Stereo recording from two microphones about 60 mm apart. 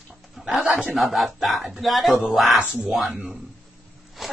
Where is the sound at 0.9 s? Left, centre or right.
Centre.